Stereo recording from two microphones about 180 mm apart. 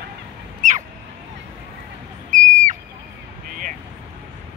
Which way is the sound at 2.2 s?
45° right (ahead or behind).